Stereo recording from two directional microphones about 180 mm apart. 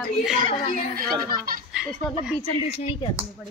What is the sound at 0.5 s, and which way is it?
Speech, 45° left (ahead or behind).